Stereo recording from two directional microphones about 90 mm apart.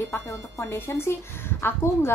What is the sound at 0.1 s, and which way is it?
Speech, 25° left (ahead or behind).